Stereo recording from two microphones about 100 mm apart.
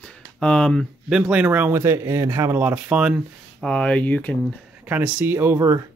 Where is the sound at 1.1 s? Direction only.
10° right (ahead or behind).